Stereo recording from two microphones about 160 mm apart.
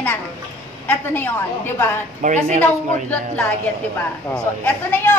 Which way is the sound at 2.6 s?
10° left (ahead or behind).